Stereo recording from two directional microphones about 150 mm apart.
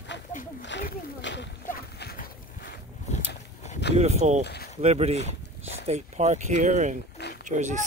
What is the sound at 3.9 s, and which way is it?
Speech, 45° right (ahead or behind).